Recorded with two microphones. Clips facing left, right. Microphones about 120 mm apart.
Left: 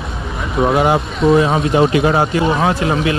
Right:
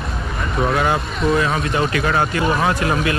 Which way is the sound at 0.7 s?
25° left (ahead or behind).